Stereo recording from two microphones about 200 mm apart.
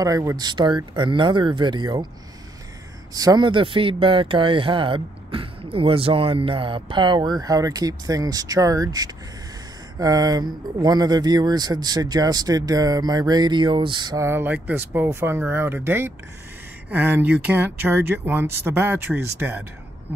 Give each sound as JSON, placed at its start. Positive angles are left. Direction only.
{"t": 0.0, "sound": "speech", "side_deg": -15}
{"t": 3.1, "sound": "speech", "side_deg": -20}